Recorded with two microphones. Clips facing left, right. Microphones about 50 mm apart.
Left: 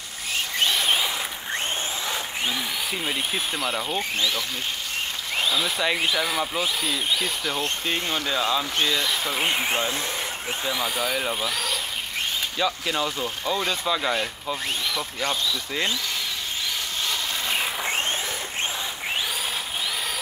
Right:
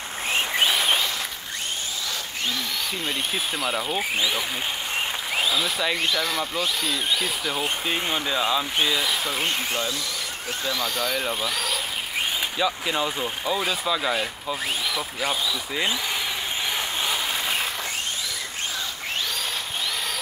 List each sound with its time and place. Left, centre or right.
0.6 s a sound: centre
3.1 s speech: centre
4.2 s speech: centre
5.3 s speech: centre
9.4 s speech: left
10.6 s speech: centre